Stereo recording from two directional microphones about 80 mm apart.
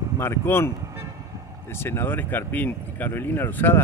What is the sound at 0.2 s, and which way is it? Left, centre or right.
Speech, left.